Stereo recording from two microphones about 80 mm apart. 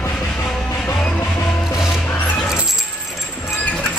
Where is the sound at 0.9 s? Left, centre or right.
Centre.